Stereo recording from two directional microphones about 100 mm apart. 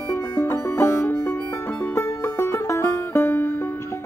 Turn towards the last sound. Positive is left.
turn(degrees=25)  # may be behind; listen again after turning